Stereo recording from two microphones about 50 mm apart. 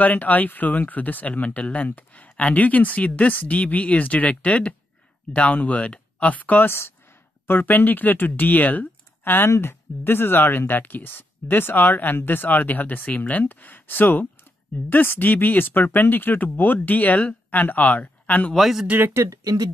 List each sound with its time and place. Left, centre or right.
0.0 s speech: left
7.4 s speech: left
18.5 s speech: centre